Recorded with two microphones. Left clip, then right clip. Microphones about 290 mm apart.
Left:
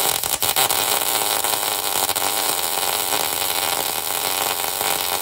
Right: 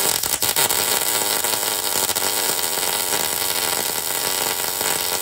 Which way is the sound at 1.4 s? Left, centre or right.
Centre.